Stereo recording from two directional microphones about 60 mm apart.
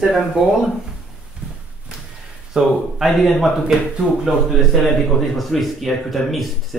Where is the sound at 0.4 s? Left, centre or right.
Centre.